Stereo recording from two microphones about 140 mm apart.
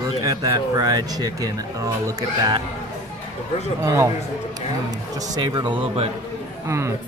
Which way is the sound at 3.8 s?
20° right (ahead or behind).